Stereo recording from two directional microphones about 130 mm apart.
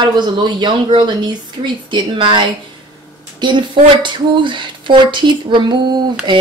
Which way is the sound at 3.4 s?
40° right (ahead or behind).